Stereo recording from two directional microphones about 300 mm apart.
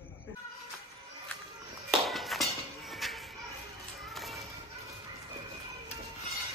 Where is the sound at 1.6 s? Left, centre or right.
Centre.